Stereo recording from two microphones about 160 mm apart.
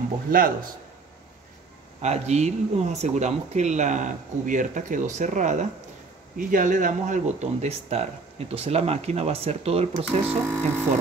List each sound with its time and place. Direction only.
0.3 s speech: 60° right (ahead or behind)
2.0 s speech: 45° right (ahead or behind)
10.2 s speech: 15° right (ahead or behind)